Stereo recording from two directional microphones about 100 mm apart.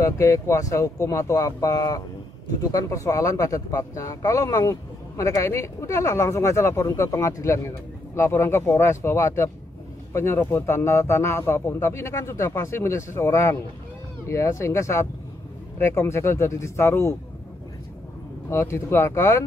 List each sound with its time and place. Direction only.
0.0 s speech: 30° left (ahead or behind)
18.5 s speech: 25° left (ahead or behind)